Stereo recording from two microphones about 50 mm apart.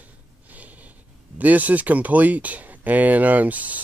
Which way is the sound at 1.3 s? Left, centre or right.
Right.